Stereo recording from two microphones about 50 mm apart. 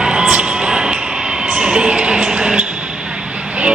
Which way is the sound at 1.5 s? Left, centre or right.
Centre.